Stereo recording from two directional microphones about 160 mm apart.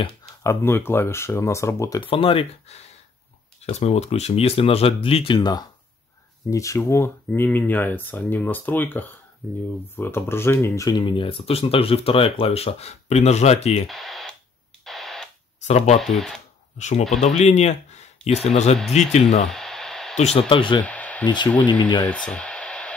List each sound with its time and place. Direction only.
0.2 s speech: 20° left (ahead or behind)
2.0 s speech: 35° left (ahead or behind)
13.8 s speech: centre (ahead or behind)
14.9 s radio: centre (ahead or behind)
15.6 s speech: 45° left (ahead or behind)
16.0 s speech: centre (ahead or behind)
16.7 s speech: 45° left (ahead or behind)
19.5 s a sound: 5° left (ahead or behind)
20.3 s speech: 35° left (ahead or behind)
20.8 s a sound: 10° left (ahead or behind)
21.5 s speech: 30° left (ahead or behind)
22.0 s a sound: 5° left (ahead or behind)